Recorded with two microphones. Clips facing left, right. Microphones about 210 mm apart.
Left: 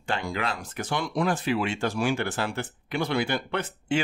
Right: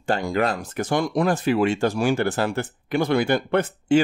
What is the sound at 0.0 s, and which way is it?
Speech, 45° right (ahead or behind).